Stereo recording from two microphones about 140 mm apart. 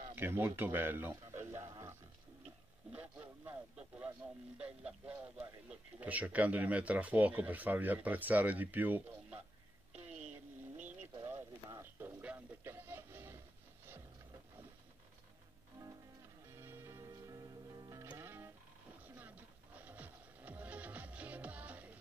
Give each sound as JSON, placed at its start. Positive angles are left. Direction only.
{"t": 0.1, "sound": "a sound", "side_deg": -15}
{"t": 2.9, "sound": "a man's voice", "side_deg": -10}
{"t": 9.9, "sound": "a sound", "side_deg": -50}
{"t": 10.8, "sound": "pigeon", "side_deg": -10}
{"t": 11.2, "sound": "a man's voice", "side_deg": -15}
{"t": 15.8, "sound": "music", "side_deg": -15}